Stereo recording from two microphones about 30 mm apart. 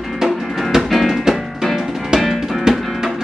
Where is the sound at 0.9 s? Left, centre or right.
Centre.